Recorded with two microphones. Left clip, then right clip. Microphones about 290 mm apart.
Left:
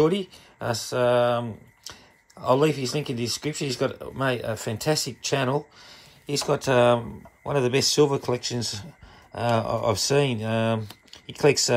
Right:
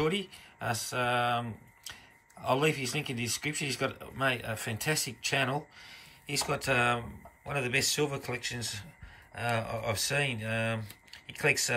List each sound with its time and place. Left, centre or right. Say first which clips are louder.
0.6 s speech: left 7 dB; centre
2.4 s speech: left 7 dB; centre